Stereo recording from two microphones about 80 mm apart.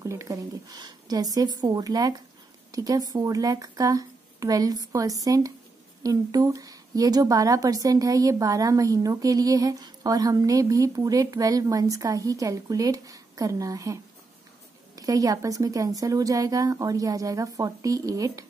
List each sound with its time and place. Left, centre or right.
0.0 s a woman's voice: right
15.0 s a woman's voice: right